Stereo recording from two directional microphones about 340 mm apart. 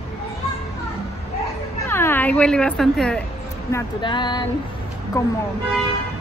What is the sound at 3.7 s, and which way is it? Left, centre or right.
Speech, centre.